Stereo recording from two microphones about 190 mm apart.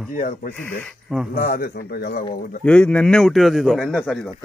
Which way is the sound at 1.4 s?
50° left (ahead or behind).